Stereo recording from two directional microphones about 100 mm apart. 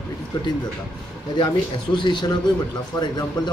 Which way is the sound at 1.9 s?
50° left (ahead or behind).